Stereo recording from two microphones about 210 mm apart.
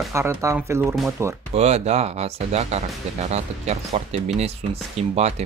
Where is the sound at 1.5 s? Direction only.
30° right (ahead or behind).